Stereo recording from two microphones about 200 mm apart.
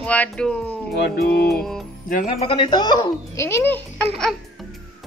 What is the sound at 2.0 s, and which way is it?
Speech, 40° left (ahead or behind).